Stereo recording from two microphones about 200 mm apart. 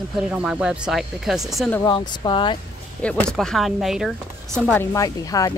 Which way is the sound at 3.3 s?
Centre (ahead or behind).